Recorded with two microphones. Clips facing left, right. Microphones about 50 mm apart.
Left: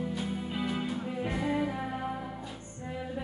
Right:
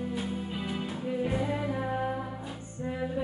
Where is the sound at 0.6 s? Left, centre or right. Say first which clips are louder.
Left 1 dB; centre.